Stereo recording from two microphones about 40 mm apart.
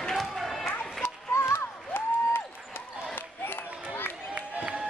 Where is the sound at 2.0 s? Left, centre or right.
Left.